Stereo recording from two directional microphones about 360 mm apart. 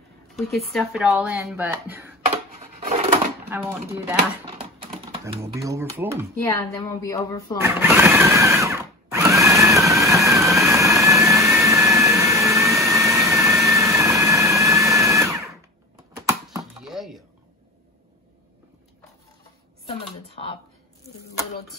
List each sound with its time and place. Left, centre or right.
0.4 s speech: centre
2.9 s a sound: centre
5.2 s speech: centre
6.4 s a woman's voice: centre
7.6 s drill: centre
16.2 s a sound: centre
20.2 s computer keyboard: centre